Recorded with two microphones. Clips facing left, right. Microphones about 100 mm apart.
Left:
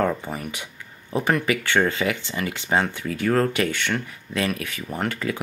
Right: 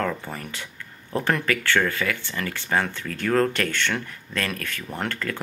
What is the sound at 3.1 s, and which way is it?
Speech, 5° left (ahead or behind).